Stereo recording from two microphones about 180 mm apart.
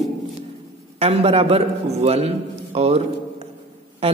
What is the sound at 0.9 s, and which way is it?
A man's voice, 35° right (ahead or behind).